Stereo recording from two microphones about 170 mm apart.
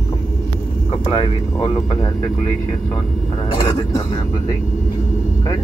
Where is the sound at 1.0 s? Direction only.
35° left (ahead or behind).